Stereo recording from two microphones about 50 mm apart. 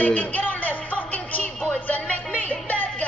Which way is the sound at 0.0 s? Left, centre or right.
Left.